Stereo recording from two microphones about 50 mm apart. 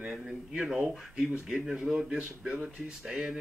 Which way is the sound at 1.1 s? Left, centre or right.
Right.